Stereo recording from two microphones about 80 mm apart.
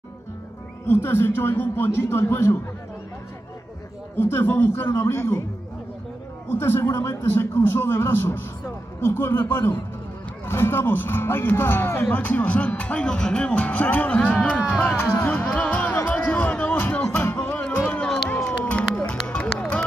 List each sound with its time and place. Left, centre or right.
0.8 s speech: left
4.2 s speech: left
6.5 s speech: left; by 14.6 s centre
15.0 s speech: left
15.4 s music: centre
18.4 s run: centre